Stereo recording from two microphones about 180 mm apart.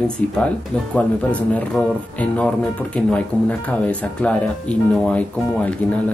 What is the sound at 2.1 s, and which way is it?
Speech, 10° left (ahead or behind).